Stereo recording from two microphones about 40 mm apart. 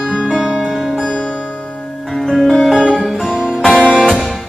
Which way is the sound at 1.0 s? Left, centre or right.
Left.